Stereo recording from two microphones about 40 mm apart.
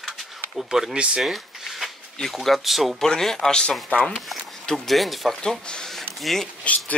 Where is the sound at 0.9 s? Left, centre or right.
Right.